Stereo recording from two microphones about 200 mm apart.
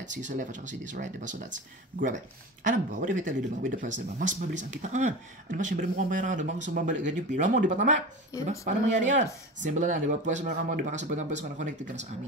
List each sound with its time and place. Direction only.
0.0 s speech: 40° right (ahead or behind)
2.6 s speech: 40° right (ahead or behind)